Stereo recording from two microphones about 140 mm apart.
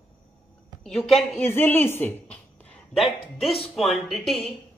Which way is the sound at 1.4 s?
15° left (ahead or behind).